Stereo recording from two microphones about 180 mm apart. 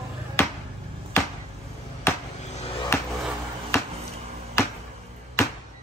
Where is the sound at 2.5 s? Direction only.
35° left (ahead or behind).